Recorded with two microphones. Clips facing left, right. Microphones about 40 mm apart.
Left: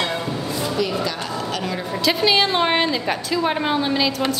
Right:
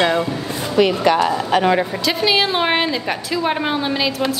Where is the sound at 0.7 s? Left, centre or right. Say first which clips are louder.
Right 12 dB; right.